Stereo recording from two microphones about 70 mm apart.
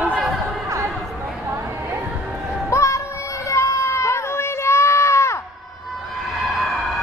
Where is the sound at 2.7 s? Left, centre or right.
Left.